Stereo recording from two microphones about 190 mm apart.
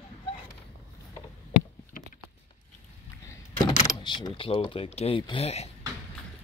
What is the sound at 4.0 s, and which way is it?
Speech, 25° left (ahead or behind).